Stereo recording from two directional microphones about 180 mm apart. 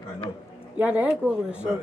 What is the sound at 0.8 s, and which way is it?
Speech, 5° right (ahead or behind).